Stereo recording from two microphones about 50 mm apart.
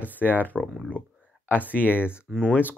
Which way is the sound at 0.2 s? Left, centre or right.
Left.